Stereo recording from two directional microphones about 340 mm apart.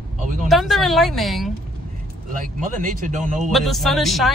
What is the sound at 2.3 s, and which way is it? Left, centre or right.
Speech, right.